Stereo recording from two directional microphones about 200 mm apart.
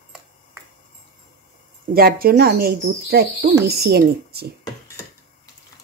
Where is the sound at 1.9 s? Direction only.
50° right (ahead or behind).